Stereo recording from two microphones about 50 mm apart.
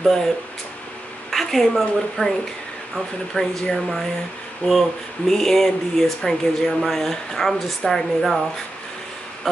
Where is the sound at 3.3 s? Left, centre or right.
Centre.